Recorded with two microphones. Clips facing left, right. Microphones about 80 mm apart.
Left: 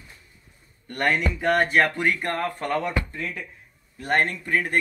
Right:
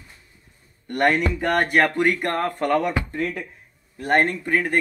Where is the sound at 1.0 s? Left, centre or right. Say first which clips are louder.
Right 2 dB; right.